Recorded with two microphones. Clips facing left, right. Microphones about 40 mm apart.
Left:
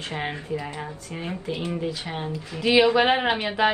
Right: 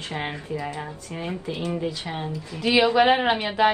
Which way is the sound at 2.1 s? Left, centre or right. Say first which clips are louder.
Even; left.